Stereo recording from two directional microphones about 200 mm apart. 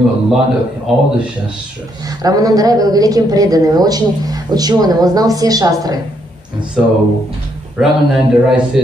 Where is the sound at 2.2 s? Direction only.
20° right (ahead or behind).